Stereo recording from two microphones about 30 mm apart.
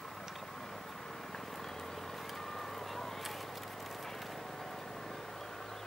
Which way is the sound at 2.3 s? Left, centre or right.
Centre.